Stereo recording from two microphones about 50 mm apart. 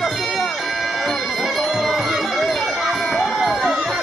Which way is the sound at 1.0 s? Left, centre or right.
Centre.